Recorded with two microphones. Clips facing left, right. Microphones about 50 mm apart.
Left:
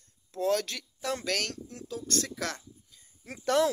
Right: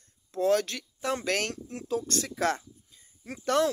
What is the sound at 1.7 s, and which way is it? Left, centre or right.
Speech, right.